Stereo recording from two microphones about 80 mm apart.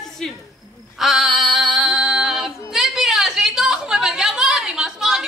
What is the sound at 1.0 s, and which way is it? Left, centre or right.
Female singing, centre.